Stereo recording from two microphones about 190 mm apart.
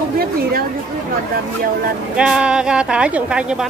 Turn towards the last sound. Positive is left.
turn(degrees=-5)  # may be behind; listen again after turning